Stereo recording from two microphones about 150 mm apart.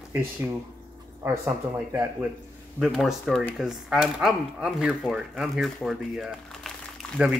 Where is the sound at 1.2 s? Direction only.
15° right (ahead or behind).